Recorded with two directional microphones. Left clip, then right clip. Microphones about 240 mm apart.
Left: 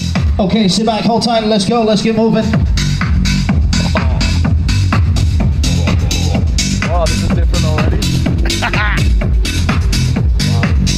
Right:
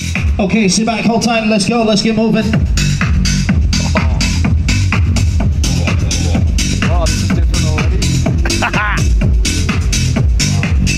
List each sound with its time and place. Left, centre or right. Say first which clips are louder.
0.5 s a man's voice: even; left; by 2.6 s centre
2.8 s music: right 1 dB; right
8.5 s music: right 1 dB; centre
10.6 s music: even; left